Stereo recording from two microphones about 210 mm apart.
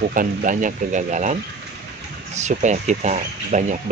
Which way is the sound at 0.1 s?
40° right (ahead or behind).